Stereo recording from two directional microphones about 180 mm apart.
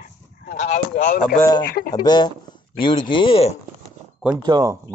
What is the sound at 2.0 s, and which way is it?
Speech, 25° left (ahead or behind).